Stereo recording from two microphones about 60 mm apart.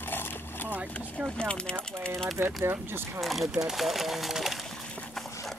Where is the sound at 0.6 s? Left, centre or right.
Right.